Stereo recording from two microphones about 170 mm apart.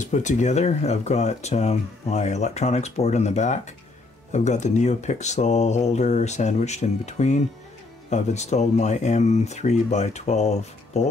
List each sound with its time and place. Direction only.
0.0 s speech: 45° left (ahead or behind)